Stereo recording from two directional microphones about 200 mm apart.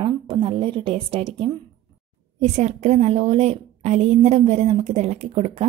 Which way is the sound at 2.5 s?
35° right (ahead or behind).